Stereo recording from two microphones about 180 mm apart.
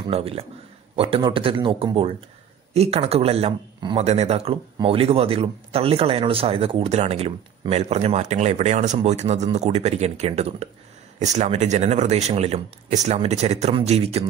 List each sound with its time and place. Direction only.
0.1 s speech: 35° right (ahead or behind)